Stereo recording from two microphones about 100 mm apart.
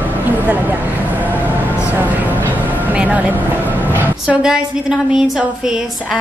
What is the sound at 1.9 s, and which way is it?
Music, 20° right (ahead or behind).